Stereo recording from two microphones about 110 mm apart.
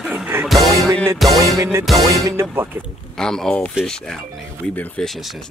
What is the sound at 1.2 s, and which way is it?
Speech, centre (ahead or behind).